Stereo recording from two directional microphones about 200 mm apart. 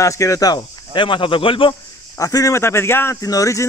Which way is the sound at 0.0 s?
15° left (ahead or behind).